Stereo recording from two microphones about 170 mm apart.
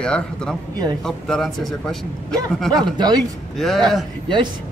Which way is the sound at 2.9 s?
25° right (ahead or behind).